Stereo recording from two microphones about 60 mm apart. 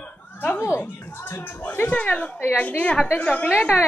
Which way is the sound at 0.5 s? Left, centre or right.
Left.